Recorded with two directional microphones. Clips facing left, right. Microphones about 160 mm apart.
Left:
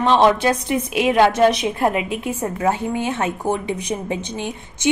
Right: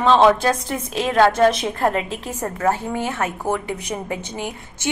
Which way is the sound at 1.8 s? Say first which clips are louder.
Left 1 dB; 10° left (ahead or behind).